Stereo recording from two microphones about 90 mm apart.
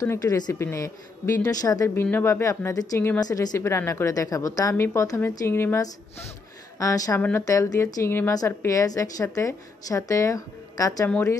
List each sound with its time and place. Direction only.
0.0 s a woman's voice: 35° left (ahead or behind)
2.0 s speech: 25° left (ahead or behind)
2.4 s a woman's voice: 40° left (ahead or behind)
6.8 s a woman's voice: 40° left (ahead or behind)
8.3 s a woman's voice: 40° left (ahead or behind)